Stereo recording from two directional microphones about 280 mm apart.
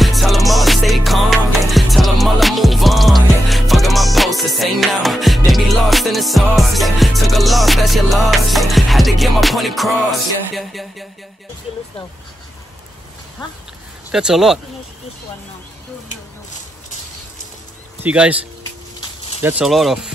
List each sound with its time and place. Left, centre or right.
0.0 s music: centre
13.4 s speech: centre
14.1 s speech: centre
18.0 s speech: centre